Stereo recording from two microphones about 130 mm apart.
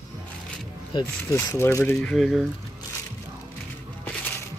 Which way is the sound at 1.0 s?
25° left (ahead or behind).